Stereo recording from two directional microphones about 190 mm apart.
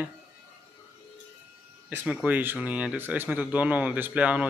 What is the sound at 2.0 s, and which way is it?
A man's voice, 5° right (ahead or behind).